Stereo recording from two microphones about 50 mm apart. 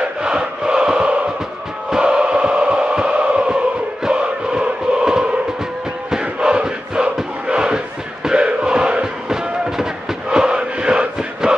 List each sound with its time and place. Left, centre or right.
0.0 s a sound: centre
1.9 s music: centre
6.0 s crowd: centre
10.3 s chant: centre